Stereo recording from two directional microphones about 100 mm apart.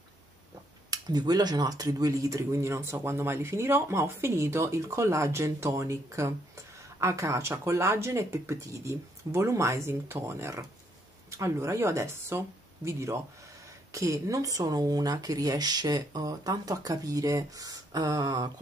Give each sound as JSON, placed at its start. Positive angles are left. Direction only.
{"t": 0.8, "sound": "speech", "side_deg": -40}